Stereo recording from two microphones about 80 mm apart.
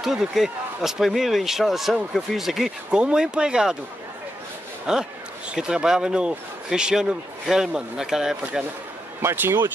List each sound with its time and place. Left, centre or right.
0.0 s speech: centre
4.9 s speech: centre
9.2 s speech: right